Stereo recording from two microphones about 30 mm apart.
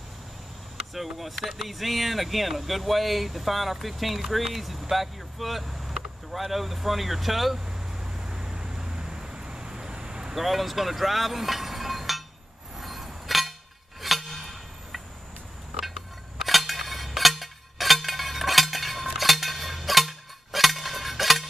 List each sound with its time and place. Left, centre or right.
0.9 s speech: centre
7.5 s vehicle: right
10.3 s speech: centre
12.7 s a sound: centre
16.3 s music: centre